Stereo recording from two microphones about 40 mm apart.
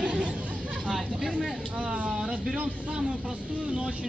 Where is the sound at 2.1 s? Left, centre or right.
Centre.